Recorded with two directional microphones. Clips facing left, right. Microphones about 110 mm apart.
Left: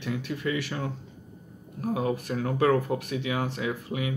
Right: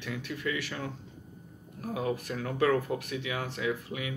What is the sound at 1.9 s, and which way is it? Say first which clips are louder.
Speech: left 2 dB; 30° left (ahead or behind).